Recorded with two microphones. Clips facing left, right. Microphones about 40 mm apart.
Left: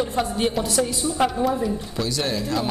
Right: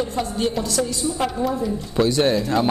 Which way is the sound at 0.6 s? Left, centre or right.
Left.